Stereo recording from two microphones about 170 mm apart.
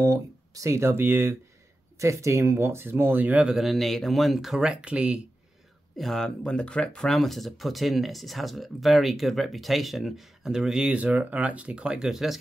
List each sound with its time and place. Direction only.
0.0 s speech: 20° right (ahead or behind); by 12.4 s 5° right (ahead or behind)